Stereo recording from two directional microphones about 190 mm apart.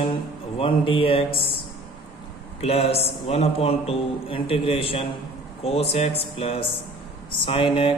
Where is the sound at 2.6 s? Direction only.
30° left (ahead or behind).